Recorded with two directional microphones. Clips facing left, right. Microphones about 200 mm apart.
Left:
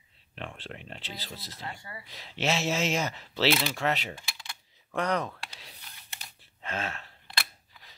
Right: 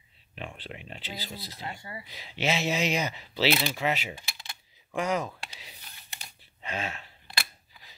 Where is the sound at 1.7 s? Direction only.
25° right (ahead or behind).